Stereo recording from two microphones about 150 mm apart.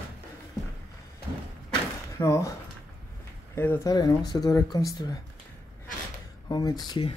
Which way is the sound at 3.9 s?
25° left (ahead or behind).